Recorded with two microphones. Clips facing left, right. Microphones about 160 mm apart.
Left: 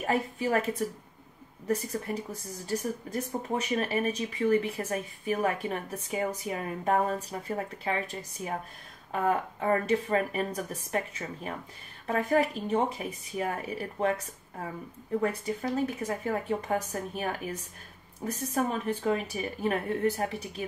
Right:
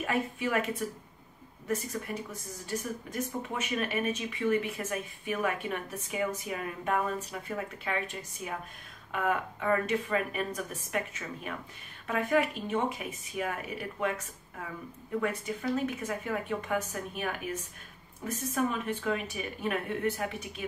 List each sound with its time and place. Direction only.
0.0 s speech: 35° left (ahead or behind)